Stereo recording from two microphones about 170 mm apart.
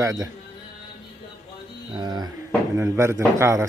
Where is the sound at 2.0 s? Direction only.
25° right (ahead or behind).